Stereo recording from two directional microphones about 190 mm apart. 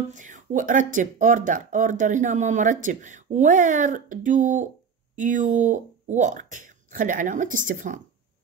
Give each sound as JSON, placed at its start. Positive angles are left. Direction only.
{"t": 0.1, "sound": "speech", "side_deg": -40}